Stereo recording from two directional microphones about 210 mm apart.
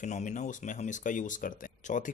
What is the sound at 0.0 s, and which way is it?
Speech, 35° left (ahead or behind).